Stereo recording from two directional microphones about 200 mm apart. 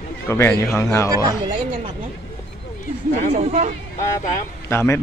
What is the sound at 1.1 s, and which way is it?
Speech, 20° right (ahead or behind).